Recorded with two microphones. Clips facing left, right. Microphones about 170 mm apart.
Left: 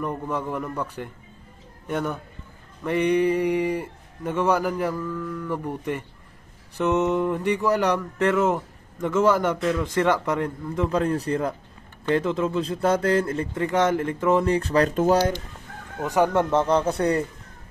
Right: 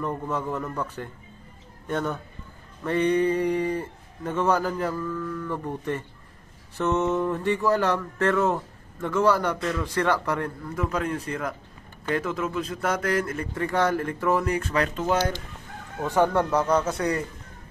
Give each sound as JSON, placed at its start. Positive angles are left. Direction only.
{"t": 0.0, "sound": "speech", "side_deg": 10}
{"t": 16.0, "sound": "speech", "side_deg": 15}
{"t": 16.5, "sound": "speech", "side_deg": 30}